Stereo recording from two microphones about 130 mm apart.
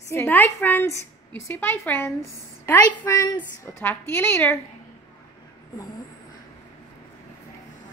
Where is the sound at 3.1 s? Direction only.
25° left (ahead or behind).